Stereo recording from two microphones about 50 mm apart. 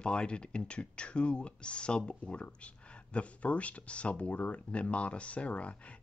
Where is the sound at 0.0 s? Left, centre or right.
Centre.